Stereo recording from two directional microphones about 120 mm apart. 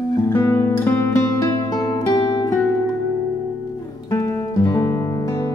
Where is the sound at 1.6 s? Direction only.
40° left (ahead or behind).